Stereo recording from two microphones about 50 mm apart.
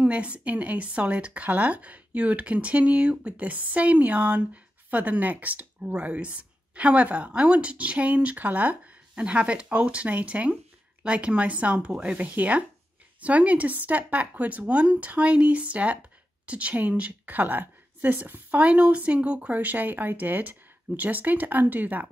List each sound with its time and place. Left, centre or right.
0.0 s speech: right
18.6 s speech: right